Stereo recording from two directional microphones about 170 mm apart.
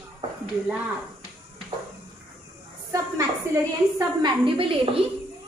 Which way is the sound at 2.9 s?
15° right (ahead or behind).